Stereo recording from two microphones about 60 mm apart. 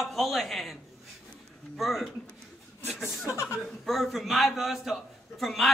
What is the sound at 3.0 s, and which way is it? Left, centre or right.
Speech, left.